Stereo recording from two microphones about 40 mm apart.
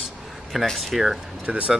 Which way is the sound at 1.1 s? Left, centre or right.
Right.